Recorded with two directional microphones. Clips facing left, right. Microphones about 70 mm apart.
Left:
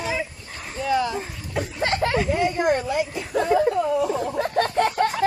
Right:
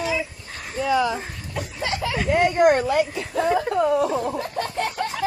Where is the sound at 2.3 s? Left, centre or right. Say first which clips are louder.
Right 9 dB; right.